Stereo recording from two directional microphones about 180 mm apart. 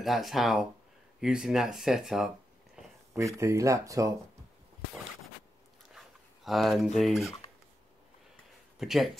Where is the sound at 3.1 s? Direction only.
15° right (ahead or behind).